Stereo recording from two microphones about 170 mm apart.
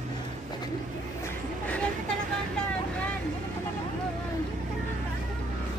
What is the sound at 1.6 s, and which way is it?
Vehicle, 10° left (ahead or behind).